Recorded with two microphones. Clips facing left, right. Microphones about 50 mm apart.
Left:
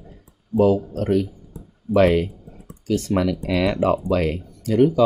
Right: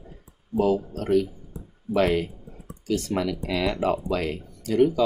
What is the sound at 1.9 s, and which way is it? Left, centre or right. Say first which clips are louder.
Speech: left 6 dB; left.